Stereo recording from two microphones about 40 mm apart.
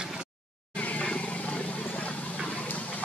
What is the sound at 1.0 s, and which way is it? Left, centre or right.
Vehicle, left.